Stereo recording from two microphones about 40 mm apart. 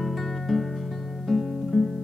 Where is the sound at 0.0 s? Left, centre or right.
Centre.